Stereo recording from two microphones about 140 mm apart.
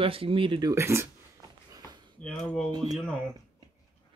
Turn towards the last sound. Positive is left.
turn(degrees=0)  # may be behind; listen again after turning